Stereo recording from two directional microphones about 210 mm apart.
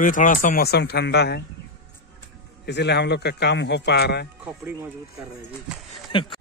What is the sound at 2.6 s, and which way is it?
A man's voice, 55° left (ahead or behind).